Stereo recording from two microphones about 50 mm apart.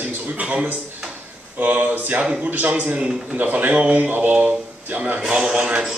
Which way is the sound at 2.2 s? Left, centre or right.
Right.